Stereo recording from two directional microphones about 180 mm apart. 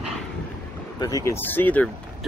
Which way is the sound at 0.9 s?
20° left (ahead or behind).